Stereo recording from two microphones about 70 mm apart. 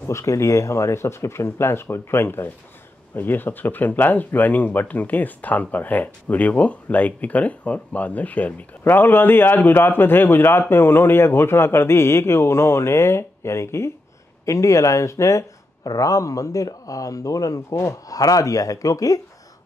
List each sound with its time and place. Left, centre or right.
0.0 s a man's voice: left
15.8 s speech: left